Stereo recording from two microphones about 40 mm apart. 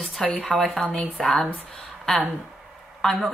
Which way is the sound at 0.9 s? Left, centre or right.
Left.